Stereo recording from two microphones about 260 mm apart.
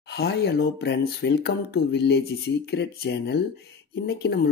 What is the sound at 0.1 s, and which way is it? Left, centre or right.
Speech, left.